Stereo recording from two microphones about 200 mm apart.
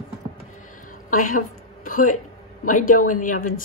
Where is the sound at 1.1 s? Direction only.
40° left (ahead or behind).